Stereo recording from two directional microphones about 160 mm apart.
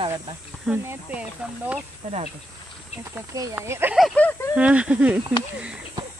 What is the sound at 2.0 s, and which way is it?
Speech, 45° right (ahead or behind).